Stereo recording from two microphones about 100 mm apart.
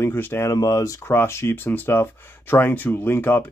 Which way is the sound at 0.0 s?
20° left (ahead or behind).